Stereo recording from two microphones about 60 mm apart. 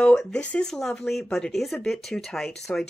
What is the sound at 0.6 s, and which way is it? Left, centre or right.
Speech, centre.